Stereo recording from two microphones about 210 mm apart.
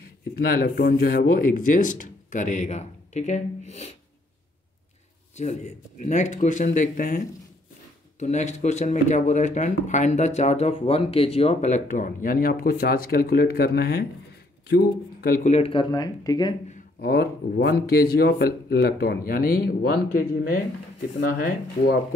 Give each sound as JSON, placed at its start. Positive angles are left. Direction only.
{"t": 0.4, "sound": "speech", "side_deg": 45}
{"t": 5.3, "sound": "speech", "side_deg": 35}
{"t": 16.6, "sound": "speech", "side_deg": 40}